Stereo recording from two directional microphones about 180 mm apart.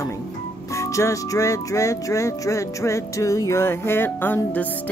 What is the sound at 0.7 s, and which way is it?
Speech, 15° left (ahead or behind).